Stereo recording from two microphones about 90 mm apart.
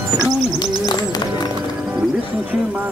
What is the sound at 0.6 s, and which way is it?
Bird, 50° left (ahead or behind).